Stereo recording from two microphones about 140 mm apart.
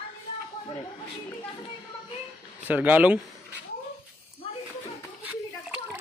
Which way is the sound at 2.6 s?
10° right (ahead or behind).